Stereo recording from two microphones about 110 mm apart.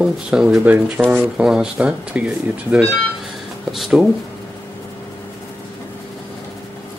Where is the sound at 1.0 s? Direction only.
Centre (ahead or behind).